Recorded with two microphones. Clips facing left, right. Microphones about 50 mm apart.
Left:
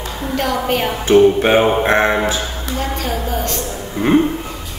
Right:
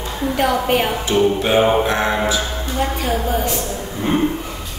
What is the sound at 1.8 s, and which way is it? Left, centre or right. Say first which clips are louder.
Speech: left 4 dB; left.